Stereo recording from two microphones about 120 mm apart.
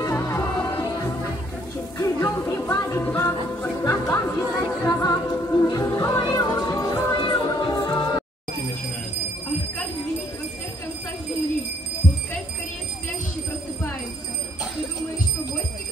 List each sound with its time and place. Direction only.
0.0 s music: 20° left (ahead or behind)
7.2 s music: 40° left (ahead or behind)